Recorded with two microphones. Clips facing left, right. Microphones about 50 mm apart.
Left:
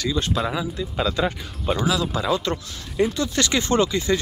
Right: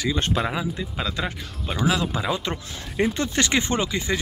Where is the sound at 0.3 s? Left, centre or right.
Right.